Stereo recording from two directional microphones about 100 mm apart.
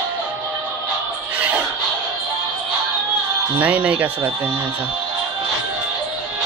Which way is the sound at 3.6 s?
15° right (ahead or behind).